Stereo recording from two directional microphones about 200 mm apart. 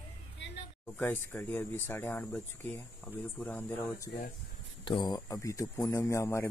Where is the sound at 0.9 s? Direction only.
10° left (ahead or behind).